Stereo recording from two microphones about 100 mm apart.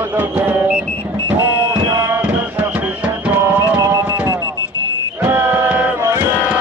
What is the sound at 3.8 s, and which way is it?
Music, 30° right (ahead or behind).